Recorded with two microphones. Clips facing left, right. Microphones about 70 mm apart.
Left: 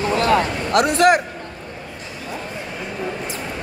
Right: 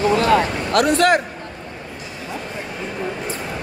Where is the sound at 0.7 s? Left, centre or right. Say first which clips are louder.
Left 1 dB; left.